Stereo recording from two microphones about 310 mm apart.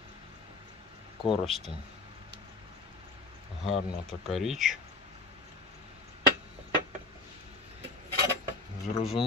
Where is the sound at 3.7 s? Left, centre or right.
Centre.